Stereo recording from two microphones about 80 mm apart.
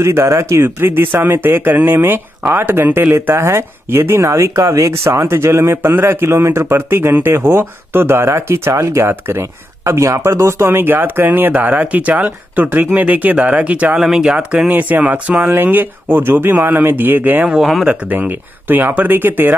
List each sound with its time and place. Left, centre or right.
0.0 s speech: right
9.8 s speech: right
17.5 s speech: centre
17.8 s speech: centre